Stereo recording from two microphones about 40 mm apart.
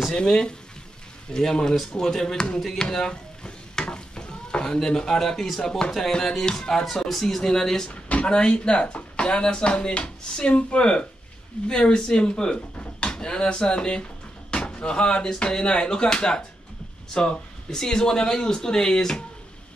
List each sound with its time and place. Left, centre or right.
0.1 s speech: left
2.8 s a sound: centre
4.8 s speech: centre
5.9 s speech: centre
7.9 s speech: left; by 19.1 s centre